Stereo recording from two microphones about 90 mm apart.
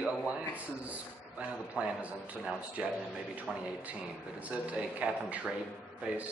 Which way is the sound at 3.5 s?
5° left (ahead or behind).